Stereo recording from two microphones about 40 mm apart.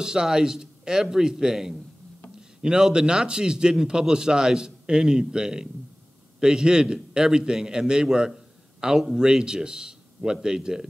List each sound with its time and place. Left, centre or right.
0.0 s a man's voice: centre